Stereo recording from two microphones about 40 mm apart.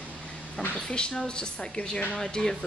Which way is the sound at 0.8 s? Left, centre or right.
Left.